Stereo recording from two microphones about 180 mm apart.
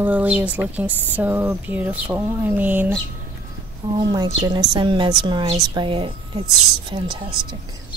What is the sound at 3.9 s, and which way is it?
A woman's voice, 25° right (ahead or behind).